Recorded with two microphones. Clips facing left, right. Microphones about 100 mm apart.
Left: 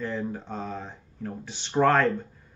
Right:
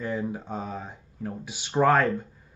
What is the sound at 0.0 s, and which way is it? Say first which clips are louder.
Speech: right 1 dB; 10° right (ahead or behind).